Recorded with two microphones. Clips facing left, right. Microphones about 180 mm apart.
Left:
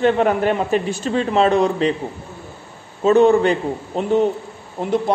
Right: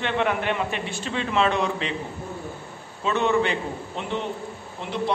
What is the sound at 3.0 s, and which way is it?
Speech, 40° left (ahead or behind).